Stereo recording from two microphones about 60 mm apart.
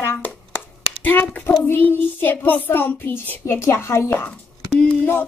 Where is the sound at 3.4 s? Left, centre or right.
Left.